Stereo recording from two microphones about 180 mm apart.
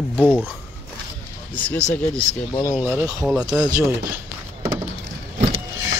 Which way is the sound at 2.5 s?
15° left (ahead or behind).